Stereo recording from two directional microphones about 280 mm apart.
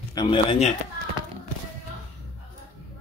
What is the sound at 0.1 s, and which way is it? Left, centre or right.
Speech, centre.